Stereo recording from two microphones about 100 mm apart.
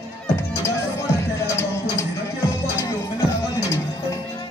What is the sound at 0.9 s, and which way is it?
Music, 25° left (ahead or behind).